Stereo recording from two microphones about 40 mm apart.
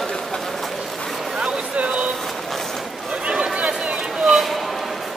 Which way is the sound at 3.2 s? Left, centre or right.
Right.